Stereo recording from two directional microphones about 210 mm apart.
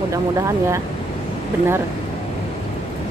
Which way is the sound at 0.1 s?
15° right (ahead or behind).